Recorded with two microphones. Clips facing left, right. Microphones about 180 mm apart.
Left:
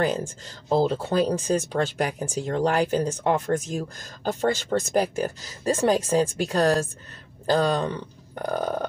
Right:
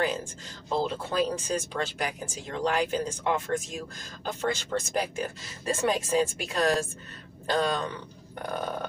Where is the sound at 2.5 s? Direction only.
40° left (ahead or behind).